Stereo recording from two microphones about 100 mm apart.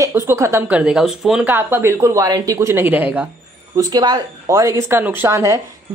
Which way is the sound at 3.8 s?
45° right (ahead or behind).